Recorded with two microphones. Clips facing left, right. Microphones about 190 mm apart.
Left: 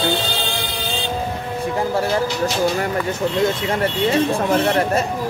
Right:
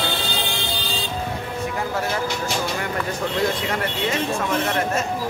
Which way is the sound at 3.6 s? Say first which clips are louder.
Left 5 dB; 35° left (ahead or behind).